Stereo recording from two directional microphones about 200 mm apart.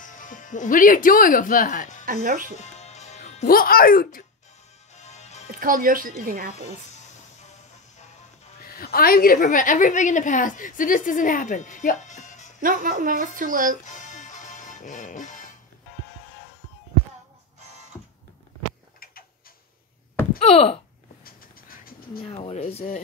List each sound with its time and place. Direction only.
0.0 s speech: 40° left (ahead or behind)
2.2 s a woman's voice: 40° right (ahead or behind)
2.6 s music: 35° left (ahead or behind)
4.9 s music: 35° left (ahead or behind)
5.5 s a woman's voice: 45° right (ahead or behind)
8.6 s a woman's voice: 45° left (ahead or behind)
12.6 s a woman's voice: 45° right (ahead or behind)
13.8 s music: 40° left (ahead or behind)
20.4 s a woman's voice: 30° left (ahead or behind)
21.2 s a sound: 45° left (ahead or behind)
22.2 s a woman's voice: 30° left (ahead or behind)